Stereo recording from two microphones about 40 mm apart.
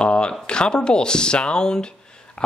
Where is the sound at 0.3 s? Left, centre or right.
Left.